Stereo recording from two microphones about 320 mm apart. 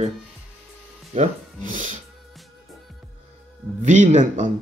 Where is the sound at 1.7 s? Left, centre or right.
Right.